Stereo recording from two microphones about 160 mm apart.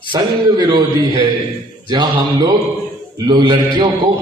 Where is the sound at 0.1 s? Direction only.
30° right (ahead or behind).